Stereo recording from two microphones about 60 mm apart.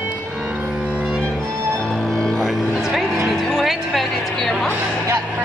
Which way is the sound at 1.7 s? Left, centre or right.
Centre.